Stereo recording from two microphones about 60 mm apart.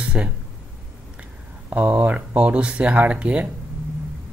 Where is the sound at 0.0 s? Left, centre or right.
Right.